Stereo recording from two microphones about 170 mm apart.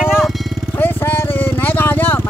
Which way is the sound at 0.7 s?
10° left (ahead or behind).